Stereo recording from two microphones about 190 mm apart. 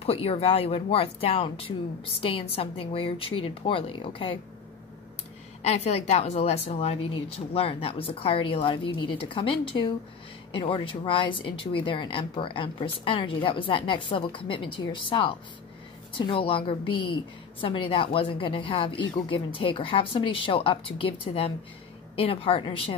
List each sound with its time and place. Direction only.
0.0 s speech: 30° left (ahead or behind)
5.6 s speech: 35° left (ahead or behind)